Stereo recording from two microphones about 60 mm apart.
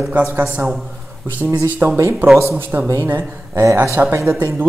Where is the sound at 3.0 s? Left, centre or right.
Right.